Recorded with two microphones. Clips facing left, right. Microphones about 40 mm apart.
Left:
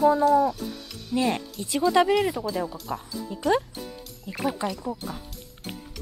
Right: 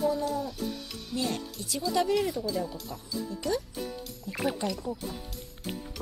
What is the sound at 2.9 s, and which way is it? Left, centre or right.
Speech, left.